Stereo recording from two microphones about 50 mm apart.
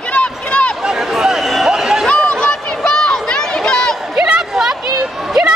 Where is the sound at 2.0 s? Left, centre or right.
Left.